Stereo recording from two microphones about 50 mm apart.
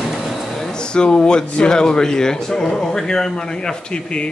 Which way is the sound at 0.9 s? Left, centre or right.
Centre.